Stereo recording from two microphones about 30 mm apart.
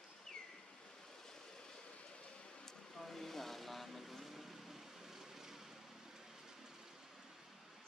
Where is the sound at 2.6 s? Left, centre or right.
Centre.